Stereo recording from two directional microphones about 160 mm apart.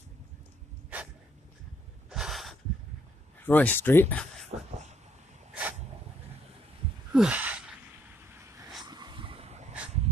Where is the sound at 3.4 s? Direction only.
10° left (ahead or behind).